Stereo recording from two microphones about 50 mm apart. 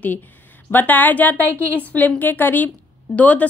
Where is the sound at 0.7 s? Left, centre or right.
Left.